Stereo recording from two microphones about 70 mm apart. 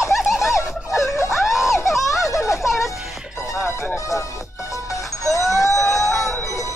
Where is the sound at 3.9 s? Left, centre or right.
Left.